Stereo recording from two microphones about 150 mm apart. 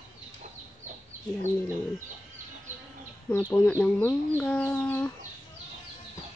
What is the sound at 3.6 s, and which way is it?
Speech, 10° left (ahead or behind).